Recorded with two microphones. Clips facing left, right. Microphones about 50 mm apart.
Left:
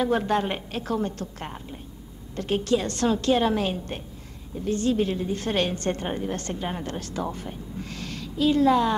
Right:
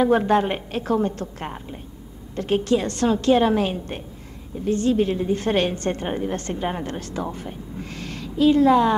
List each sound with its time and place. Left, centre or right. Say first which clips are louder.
0.0 s a woman's voice: right 5 dB; right